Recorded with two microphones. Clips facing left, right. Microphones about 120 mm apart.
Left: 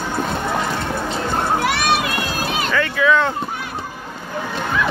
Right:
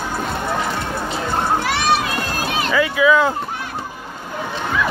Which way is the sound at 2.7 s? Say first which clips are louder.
Right 2 dB; 10° right (ahead or behind).